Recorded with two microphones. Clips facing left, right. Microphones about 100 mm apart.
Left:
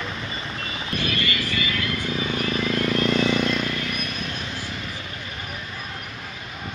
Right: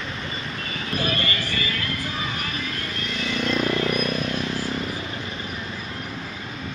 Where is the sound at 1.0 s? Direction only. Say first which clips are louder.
Even; 35° right (ahead or behind).